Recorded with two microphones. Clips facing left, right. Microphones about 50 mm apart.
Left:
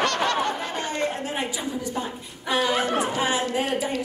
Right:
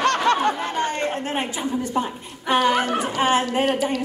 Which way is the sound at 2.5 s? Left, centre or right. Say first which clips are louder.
Right 4 dB; right.